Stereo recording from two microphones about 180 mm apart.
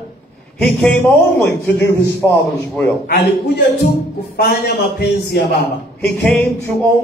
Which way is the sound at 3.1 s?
60° left (ahead or behind).